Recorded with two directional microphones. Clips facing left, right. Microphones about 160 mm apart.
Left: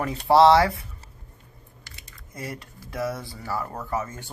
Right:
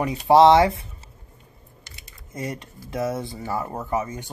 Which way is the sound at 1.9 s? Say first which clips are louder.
Right 3 dB; 20° right (ahead or behind).